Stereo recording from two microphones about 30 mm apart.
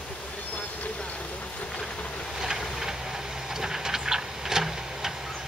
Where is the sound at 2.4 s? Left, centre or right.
Centre.